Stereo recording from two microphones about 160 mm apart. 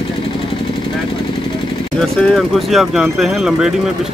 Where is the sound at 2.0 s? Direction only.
Centre (ahead or behind).